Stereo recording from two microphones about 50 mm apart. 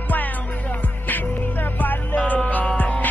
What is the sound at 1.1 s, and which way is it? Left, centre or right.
Music, left.